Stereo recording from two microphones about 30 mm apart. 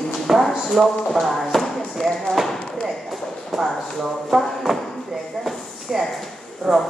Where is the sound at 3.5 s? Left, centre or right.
Centre.